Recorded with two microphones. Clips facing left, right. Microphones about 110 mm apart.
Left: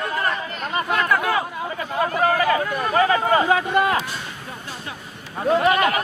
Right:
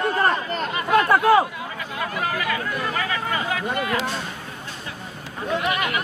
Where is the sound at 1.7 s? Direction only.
40° left (ahead or behind).